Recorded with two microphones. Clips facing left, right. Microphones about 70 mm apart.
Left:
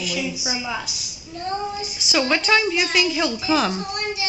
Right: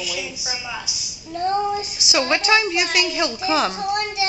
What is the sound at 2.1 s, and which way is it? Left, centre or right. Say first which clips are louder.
A woman's voice: right 1 dB; centre.